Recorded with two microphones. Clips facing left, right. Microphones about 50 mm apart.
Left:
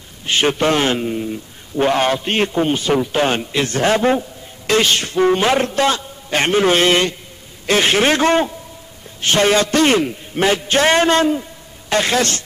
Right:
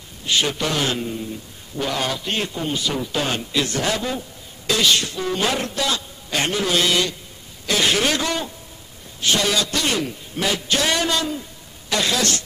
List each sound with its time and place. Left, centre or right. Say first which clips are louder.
0.2 s a man's voice: left 5 dB; left